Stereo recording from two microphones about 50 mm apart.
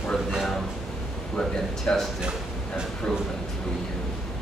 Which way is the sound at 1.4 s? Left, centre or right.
Centre.